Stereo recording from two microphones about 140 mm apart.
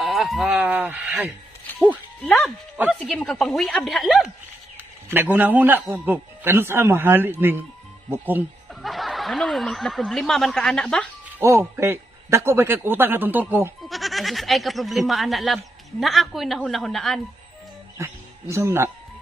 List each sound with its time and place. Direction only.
0.0 s speech: centre (ahead or behind)
2.2 s speech: centre (ahead or behind)
4.7 s speech: 15° right (ahead or behind)
8.8 s speech: centre (ahead or behind)
11.3 s speech: 20° right (ahead or behind)
13.8 s speech: centre (ahead or behind)
17.9 s speech: 20° right (ahead or behind)